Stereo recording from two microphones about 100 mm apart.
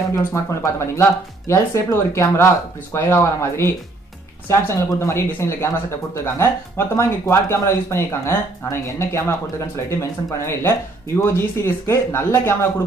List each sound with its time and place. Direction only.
0.1 s speech: 30° left (ahead or behind)